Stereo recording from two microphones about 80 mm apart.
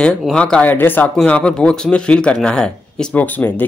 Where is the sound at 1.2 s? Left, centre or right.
Centre.